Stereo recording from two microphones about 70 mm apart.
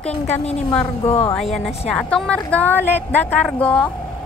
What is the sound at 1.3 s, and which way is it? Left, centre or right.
Speech, centre.